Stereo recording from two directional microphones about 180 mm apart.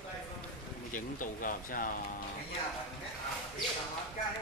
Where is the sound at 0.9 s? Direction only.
45° left (ahead or behind).